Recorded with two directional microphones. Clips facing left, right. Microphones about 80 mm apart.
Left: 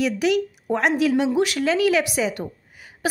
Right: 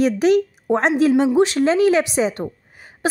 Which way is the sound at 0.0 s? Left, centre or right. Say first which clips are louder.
Right 5 dB; right.